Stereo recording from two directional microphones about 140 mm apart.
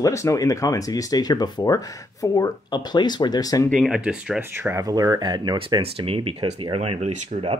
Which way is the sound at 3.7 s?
Centre (ahead or behind).